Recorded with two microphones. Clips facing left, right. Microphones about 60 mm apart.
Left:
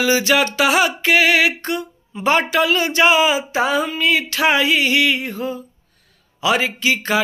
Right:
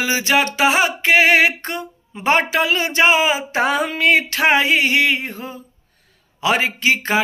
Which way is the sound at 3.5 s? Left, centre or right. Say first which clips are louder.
Even; right.